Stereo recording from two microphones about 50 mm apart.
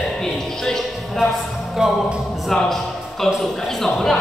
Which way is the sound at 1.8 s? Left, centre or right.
Centre.